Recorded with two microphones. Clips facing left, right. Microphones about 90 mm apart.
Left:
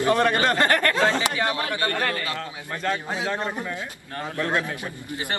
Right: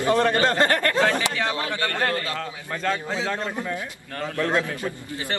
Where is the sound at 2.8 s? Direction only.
20° left (ahead or behind).